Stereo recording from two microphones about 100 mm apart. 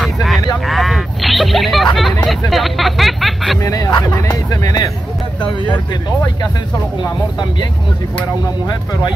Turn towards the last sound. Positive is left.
turn(degrees=45)  # may be behind; listen again after turning